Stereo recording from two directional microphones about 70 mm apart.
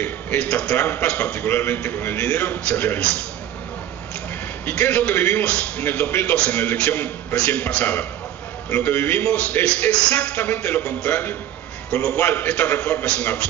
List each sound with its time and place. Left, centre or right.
0.0 s a man's voice: left
4.6 s a man's voice: left
5.4 s a man's voice: centre
6.3 s a man's voice: centre
6.6 s a man's voice: left
10.3 s a man's voice: left